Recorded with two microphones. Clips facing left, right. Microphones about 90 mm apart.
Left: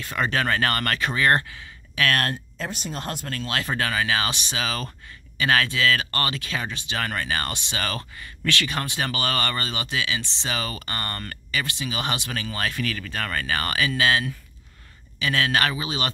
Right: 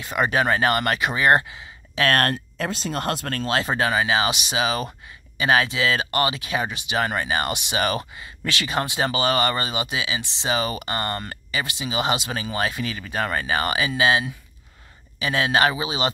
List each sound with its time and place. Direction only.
0.0 s speech: 15° right (ahead or behind)
2.2 s speech: 65° right (ahead or behind)
3.4 s speech: 25° right (ahead or behind)